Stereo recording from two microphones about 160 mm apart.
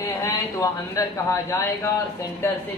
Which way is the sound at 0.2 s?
20° left (ahead or behind).